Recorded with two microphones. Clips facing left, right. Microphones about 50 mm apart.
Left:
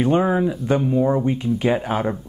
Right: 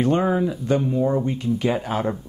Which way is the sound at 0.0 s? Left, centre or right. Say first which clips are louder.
Left 2 dB; centre.